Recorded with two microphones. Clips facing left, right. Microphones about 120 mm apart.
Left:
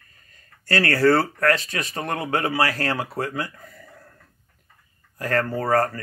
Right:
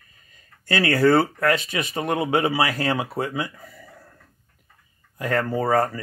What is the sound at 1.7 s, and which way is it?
Speech, 5° right (ahead or behind).